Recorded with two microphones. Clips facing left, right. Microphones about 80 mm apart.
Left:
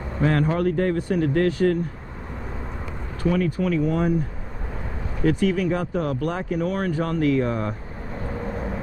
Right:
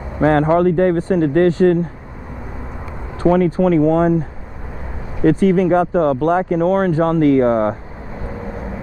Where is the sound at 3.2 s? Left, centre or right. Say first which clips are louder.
Right 9 dB; right.